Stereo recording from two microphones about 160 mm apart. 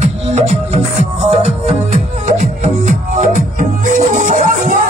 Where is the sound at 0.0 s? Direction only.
45° right (ahead or behind).